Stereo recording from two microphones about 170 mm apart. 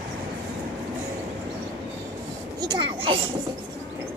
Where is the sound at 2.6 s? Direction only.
25° right (ahead or behind).